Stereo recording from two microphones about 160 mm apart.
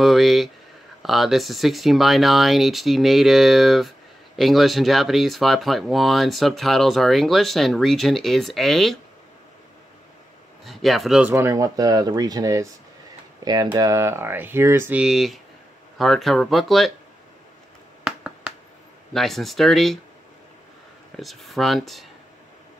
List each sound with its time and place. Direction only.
0.0 s speech: centre (ahead or behind)
10.6 s speech: centre (ahead or behind)
11.3 s speech: 20° right (ahead or behind); by 16.9 s centre (ahead or behind)
18.0 s finger snapping: 5° right (ahead or behind)
19.1 s speech: centre (ahead or behind)
21.2 s speech: centre (ahead or behind)